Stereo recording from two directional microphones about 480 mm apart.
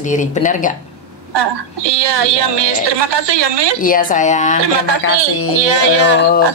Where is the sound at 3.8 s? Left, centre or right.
Centre.